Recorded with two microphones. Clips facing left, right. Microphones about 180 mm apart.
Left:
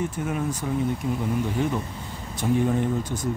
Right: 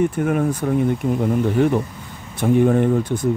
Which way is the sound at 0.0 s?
60° right (ahead or behind).